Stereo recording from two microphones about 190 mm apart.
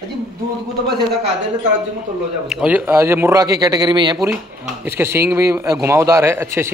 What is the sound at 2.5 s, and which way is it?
A man's voice, 5° right (ahead or behind).